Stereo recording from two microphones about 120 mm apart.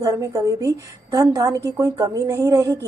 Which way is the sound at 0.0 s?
25° right (ahead or behind).